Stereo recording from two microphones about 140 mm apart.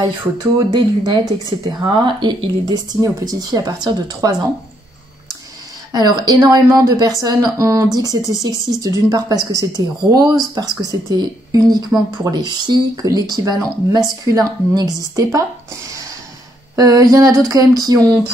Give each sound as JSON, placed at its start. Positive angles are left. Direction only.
{"t": 0.4, "sound": "speech", "side_deg": -30}
{"t": 5.9, "sound": "speech", "side_deg": -30}
{"t": 16.7, "sound": "speech", "side_deg": -25}